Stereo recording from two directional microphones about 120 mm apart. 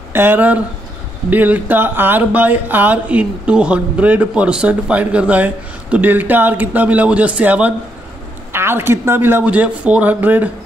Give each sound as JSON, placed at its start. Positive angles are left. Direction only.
{"t": 0.1, "sound": "speech", "side_deg": -20}